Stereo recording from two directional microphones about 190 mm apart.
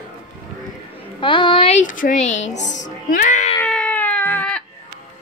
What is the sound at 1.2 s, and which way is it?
Speech, 25° left (ahead or behind).